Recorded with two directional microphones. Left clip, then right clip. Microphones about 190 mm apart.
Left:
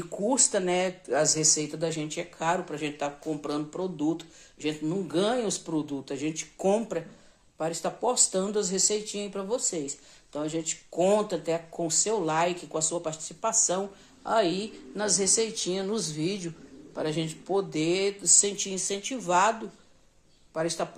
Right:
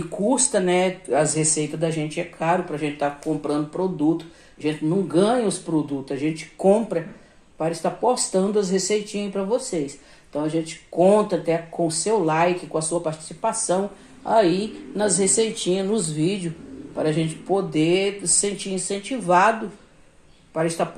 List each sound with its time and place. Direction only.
0.2 s speech: 15° left (ahead or behind)
15.4 s speech: 40° left (ahead or behind)
15.7 s speech: 15° left (ahead or behind)
20.5 s speech: 5° left (ahead or behind)